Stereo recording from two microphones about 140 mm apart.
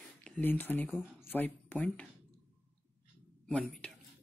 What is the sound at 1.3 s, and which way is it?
Speech, 10° left (ahead or behind).